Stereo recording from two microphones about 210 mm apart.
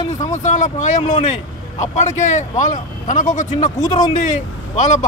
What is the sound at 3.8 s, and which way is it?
Speech, 20° left (ahead or behind).